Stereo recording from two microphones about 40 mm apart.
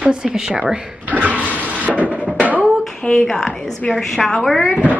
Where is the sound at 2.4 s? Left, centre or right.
Right.